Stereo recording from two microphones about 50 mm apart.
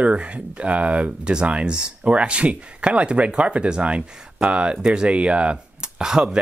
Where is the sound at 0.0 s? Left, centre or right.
Right.